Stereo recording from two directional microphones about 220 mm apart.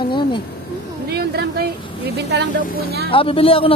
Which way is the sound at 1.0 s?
45° right (ahead or behind).